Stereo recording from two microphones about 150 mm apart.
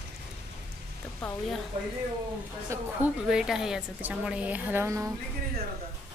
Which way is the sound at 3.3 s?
5° right (ahead or behind).